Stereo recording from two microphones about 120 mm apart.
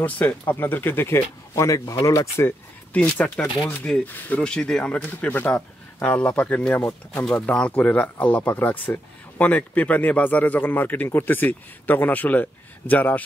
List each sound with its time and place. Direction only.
0.0 s speech: 10° left (ahead or behind)
3.0 s speech: 10° left (ahead or behind)
7.2 s speech: 5° left (ahead or behind)